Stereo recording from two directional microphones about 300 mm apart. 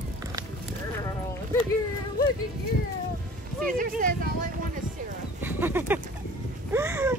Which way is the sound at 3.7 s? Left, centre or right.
Right.